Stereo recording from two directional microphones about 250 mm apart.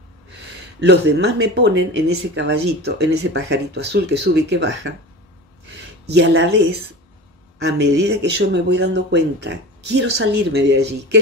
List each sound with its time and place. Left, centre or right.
0.7 s speech: right
6.2 s speech: right